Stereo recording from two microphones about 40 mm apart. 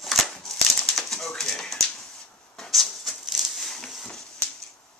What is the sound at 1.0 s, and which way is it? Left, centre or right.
Bird, centre.